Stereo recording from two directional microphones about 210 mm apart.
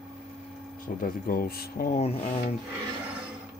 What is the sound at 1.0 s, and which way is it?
Speech, 45° left (ahead or behind).